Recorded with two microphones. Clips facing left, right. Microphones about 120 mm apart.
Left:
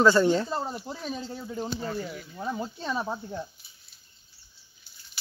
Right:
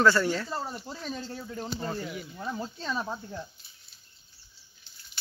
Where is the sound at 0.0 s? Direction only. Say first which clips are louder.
Left 3 dB; 20° left (ahead or behind).